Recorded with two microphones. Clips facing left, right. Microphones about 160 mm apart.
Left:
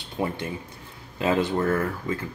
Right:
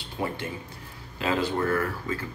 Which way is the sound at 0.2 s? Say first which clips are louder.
Left 3 dB; 25° left (ahead or behind).